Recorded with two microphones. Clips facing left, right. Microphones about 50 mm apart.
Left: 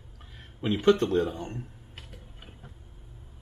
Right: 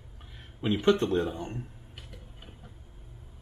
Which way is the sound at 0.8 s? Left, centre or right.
Centre.